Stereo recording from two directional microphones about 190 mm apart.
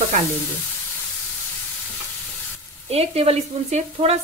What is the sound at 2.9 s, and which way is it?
A woman's voice, 35° right (ahead or behind).